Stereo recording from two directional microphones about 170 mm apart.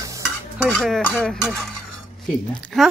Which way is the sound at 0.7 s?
5° left (ahead or behind).